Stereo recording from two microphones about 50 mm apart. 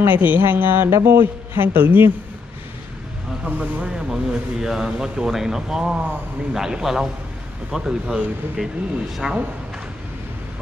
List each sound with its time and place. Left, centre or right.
0.0 s a man's voice: right
3.4 s speech: right
3.9 s speech: centre